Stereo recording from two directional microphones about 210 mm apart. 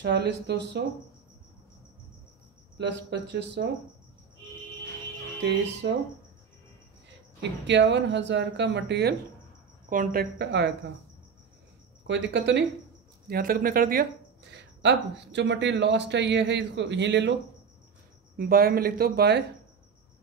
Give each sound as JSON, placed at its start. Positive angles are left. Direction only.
{"t": 0.0, "sound": "speech", "side_deg": -55}
{"t": 2.8, "sound": "speech", "side_deg": -55}
{"t": 5.4, "sound": "speech", "side_deg": -55}
{"t": 7.6, "sound": "speech", "side_deg": -55}
{"t": 9.8, "sound": "speech", "side_deg": -45}
{"t": 12.1, "sound": "speech", "side_deg": -55}
{"t": 13.3, "sound": "speech", "side_deg": -45}
{"t": 14.5, "sound": "speech", "side_deg": -55}
{"t": 18.3, "sound": "speech", "side_deg": -45}